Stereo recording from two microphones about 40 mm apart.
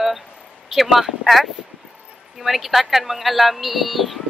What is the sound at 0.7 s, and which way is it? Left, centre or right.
Speech, centre.